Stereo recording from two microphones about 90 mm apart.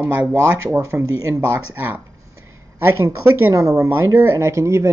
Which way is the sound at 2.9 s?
30° right (ahead or behind).